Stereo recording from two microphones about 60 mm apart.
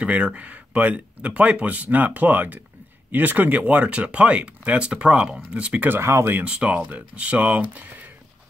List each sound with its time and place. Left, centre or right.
0.0 s speech: right
5.9 s speech: right
6.4 s speech: right